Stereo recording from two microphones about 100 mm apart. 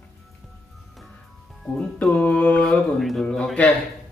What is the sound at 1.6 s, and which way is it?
Music, 5° left (ahead or behind).